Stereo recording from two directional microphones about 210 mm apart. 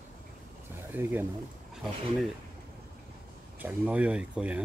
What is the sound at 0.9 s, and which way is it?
Speech, 10° right (ahead or behind).